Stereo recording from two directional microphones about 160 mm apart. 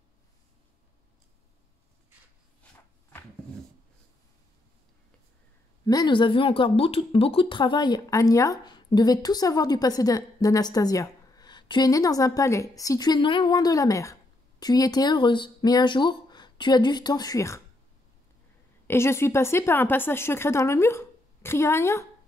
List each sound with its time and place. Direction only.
5.9 s speech: 25° left (ahead or behind)
18.9 s a woman's voice: 15° left (ahead or behind)